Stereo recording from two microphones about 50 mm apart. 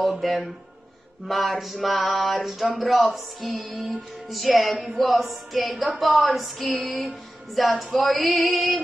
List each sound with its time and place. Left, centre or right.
0.0 s a woman's voice: centre